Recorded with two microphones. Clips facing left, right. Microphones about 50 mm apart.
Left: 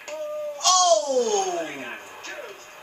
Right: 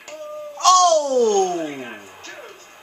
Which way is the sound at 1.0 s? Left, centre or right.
Right.